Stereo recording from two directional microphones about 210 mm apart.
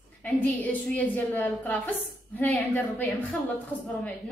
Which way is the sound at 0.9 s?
10° left (ahead or behind).